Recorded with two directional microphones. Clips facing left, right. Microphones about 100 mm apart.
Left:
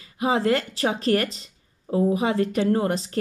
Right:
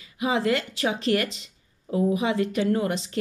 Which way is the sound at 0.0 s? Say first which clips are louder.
Left 2 dB; 40° left (ahead or behind).